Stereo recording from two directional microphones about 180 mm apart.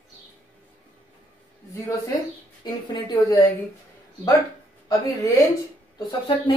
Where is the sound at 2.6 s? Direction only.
25° left (ahead or behind).